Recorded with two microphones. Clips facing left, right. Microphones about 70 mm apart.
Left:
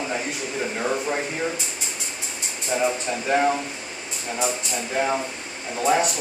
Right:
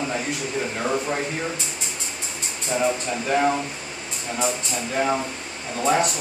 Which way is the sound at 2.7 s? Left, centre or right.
Centre.